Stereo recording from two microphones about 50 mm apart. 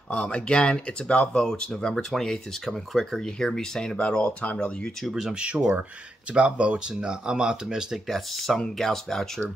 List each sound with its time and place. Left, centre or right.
0.1 s speech: left
5.0 s speech: centre
5.3 s speech: right; by 8.2 s centre
8.4 s speech: centre